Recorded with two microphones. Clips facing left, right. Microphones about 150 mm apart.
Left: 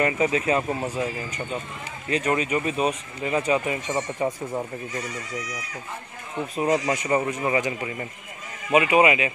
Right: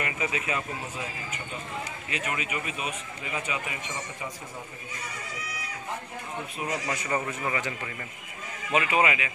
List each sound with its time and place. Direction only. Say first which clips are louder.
0.0 s a man's voice: left 9 dB; 35° left (ahead or behind)
2.0 s a man's voice: left 12 dB; 35° left (ahead or behind)
6.9 s a man's voice: left 7 dB; 25° left (ahead or behind)